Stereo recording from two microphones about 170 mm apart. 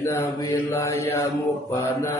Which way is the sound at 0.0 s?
15° left (ahead or behind).